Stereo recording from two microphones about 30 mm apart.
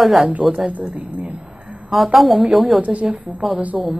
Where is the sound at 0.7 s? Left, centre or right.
Right.